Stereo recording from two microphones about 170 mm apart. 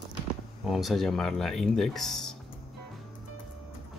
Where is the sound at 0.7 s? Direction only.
Centre (ahead or behind).